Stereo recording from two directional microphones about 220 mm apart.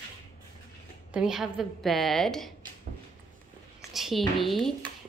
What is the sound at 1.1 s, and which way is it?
Speech, centre (ahead or behind).